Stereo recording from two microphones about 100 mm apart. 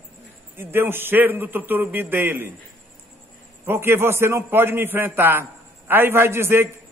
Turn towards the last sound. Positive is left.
turn(degrees=-25)  # may be behind; listen again after turning